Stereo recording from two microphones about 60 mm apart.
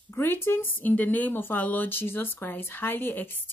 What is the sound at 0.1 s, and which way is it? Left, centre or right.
Speech, left.